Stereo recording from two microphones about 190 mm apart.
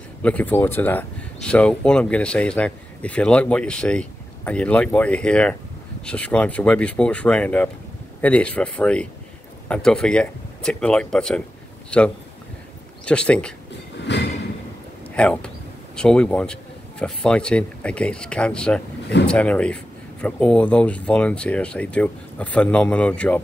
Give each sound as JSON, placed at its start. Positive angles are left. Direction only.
{"t": 0.2, "sound": "speech", "side_deg": 10}
{"t": 14.1, "sound": "train", "side_deg": 65}
{"t": 15.1, "sound": "speech", "side_deg": 5}